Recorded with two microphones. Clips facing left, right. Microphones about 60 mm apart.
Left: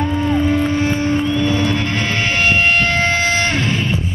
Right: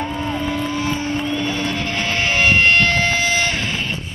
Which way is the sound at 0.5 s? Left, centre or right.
Left.